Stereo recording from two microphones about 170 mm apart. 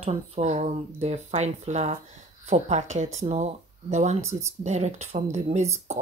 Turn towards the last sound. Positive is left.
turn(degrees=-40)  # may be behind; listen again after turning